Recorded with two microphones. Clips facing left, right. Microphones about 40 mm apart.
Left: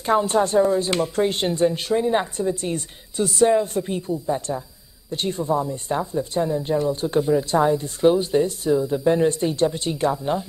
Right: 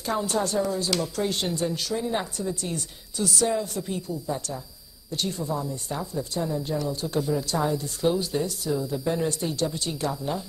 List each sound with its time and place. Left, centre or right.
0.0 s speech: left